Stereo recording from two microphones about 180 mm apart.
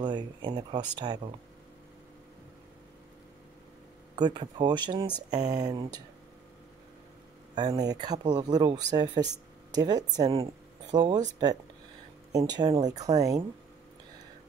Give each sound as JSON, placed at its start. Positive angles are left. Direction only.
{"t": 0.0, "sound": "speech", "side_deg": -25}
{"t": 4.1, "sound": "speech", "side_deg": -25}
{"t": 7.5, "sound": "speech", "side_deg": -20}
{"t": 12.3, "sound": "speech", "side_deg": -20}